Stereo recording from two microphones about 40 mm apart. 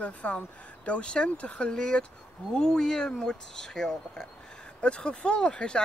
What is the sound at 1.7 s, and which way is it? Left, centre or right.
Speech, centre.